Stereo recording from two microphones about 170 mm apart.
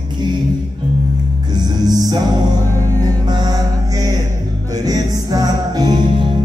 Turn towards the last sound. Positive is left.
turn(degrees=-25)  # may be behind; listen again after turning